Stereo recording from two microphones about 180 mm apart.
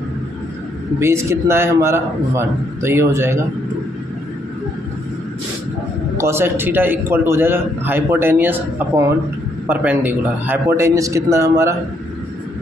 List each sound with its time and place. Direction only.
0.9 s a man's voice: 15° right (ahead or behind)
6.1 s a man's voice: 15° right (ahead or behind)